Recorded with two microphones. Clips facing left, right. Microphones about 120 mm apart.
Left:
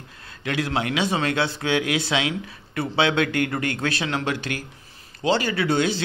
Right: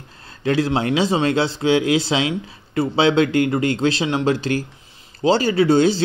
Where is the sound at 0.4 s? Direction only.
30° right (ahead or behind).